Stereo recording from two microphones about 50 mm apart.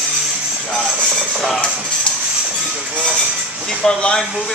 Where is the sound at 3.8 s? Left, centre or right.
Centre.